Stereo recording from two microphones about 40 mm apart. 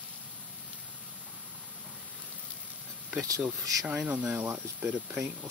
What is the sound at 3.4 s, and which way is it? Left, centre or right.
Speech, right.